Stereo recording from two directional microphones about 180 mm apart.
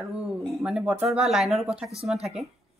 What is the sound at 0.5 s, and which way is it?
A woman's voice, centre (ahead or behind).